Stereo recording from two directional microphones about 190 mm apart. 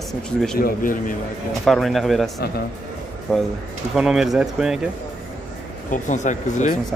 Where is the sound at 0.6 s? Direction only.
45° left (ahead or behind).